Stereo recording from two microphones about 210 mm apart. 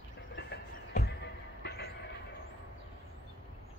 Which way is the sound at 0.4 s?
50° left (ahead or behind).